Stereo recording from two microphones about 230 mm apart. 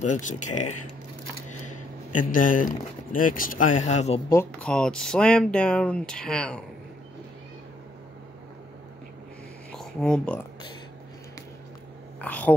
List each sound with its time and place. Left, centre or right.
0.0 s speech: left
2.1 s speech: left
4.3 s speech: centre
9.8 s speech: centre
12.2 s a sound: centre